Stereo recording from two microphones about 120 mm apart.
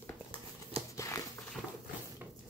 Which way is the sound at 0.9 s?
25° left (ahead or behind).